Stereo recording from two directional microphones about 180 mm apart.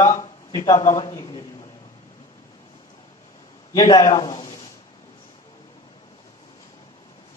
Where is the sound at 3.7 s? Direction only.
25° left (ahead or behind).